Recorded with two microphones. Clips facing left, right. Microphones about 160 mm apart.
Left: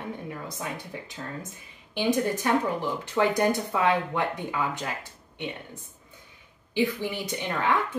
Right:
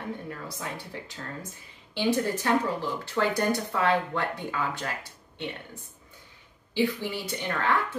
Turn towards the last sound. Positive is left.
turn(degrees=15)  # may be behind; listen again after turning